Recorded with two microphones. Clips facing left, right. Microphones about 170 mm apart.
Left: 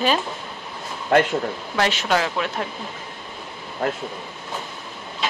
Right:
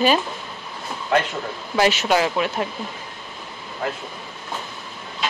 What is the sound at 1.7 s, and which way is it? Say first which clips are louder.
Speech: right 3 dB; 5° right (ahead or behind).